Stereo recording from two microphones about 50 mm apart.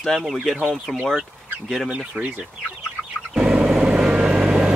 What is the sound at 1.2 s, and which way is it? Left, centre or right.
Speech, centre.